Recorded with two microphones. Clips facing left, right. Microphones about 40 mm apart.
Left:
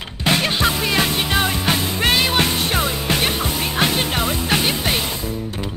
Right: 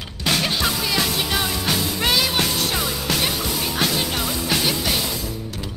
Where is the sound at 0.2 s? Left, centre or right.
Left.